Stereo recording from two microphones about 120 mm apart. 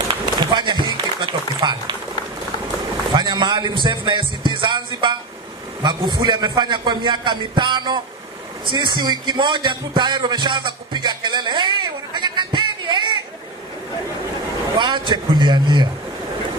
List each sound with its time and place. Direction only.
0.1 s run: 40° right (ahead or behind)
3.2 s a man's voice: 40° right (ahead or behind)
14.8 s a man's voice: 40° right (ahead or behind)